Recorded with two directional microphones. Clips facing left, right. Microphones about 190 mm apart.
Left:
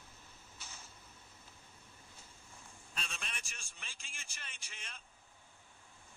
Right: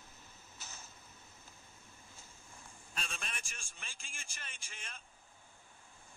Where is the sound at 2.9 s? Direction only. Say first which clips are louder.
Right 2 dB; 50° right (ahead or behind).